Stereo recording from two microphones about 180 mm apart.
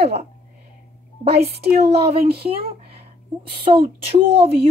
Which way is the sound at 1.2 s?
60° right (ahead or behind).